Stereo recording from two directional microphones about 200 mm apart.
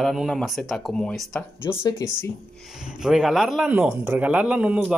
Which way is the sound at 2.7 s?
5° right (ahead or behind).